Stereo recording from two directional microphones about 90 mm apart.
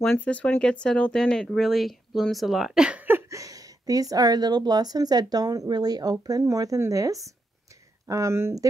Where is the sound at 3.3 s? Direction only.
40° right (ahead or behind).